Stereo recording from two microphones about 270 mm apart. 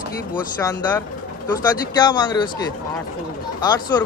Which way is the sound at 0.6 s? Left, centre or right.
Centre.